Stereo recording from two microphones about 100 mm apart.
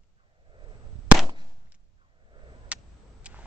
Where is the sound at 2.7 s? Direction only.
10° right (ahead or behind).